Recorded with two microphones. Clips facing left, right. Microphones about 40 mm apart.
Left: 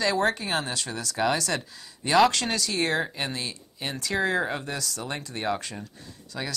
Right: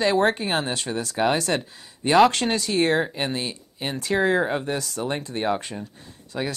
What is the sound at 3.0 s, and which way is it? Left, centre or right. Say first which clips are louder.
Speech: right 4 dB; centre.